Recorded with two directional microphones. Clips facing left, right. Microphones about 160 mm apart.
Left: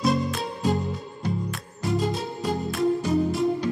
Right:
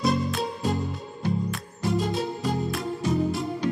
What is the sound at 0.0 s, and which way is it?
Music, centre (ahead or behind).